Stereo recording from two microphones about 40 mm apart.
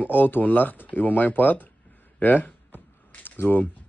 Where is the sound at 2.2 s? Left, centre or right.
Left.